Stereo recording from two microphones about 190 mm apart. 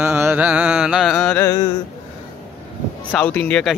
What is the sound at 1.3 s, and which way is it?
Speech, 15° left (ahead or behind).